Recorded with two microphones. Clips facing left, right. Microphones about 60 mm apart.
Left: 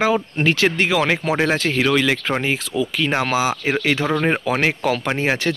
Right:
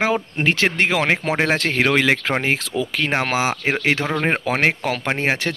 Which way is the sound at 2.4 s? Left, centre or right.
Right.